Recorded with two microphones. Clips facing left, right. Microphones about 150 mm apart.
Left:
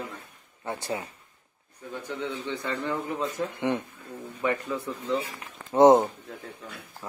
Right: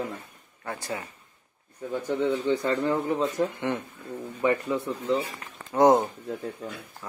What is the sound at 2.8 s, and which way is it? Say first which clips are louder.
Speech: right 5 dB; 25° right (ahead or behind).